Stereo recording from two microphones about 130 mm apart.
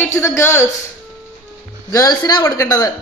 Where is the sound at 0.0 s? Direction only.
20° left (ahead or behind).